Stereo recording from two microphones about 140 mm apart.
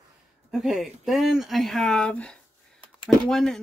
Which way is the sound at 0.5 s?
Centre (ahead or behind).